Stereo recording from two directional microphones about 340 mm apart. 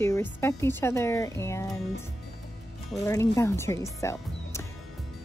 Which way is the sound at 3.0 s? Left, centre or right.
Centre.